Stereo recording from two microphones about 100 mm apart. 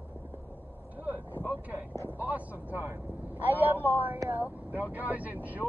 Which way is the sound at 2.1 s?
15° right (ahead or behind).